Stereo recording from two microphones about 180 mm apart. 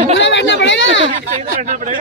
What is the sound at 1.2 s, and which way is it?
Speech, 45° right (ahead or behind).